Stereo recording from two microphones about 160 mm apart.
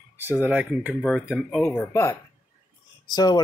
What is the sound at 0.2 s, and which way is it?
Speech, 10° right (ahead or behind).